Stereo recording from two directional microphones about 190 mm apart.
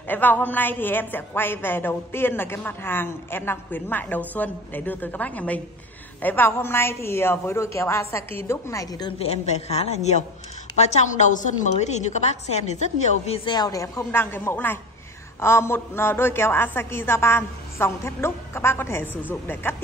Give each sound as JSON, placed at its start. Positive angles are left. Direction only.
{"t": 0.1, "sound": "a woman's voice", "side_deg": 10}
{"t": 13.6, "sound": "a woman's voice", "side_deg": 15}